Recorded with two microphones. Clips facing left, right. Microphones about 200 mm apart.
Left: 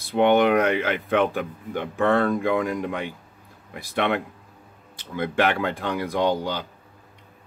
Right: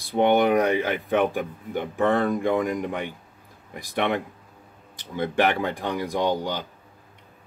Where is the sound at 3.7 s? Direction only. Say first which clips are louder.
Left 1 dB; 15° right (ahead or behind).